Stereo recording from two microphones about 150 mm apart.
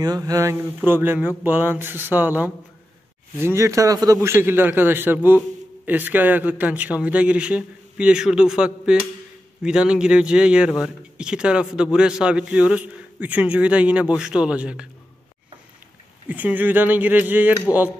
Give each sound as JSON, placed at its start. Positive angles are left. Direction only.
{"t": 0.0, "sound": "a man's voice", "side_deg": -25}
{"t": 16.3, "sound": "a man's voice", "side_deg": -10}